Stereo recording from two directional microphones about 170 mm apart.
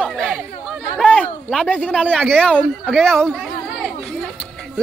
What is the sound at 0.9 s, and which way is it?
Speech, 5° left (ahead or behind).